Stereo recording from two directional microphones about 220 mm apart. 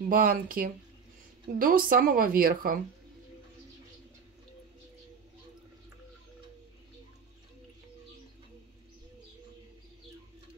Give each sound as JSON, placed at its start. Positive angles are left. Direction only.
{"t": 0.1, "sound": "a woman's voice", "side_deg": -40}